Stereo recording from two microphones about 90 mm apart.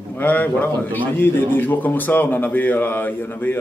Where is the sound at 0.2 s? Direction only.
20° left (ahead or behind).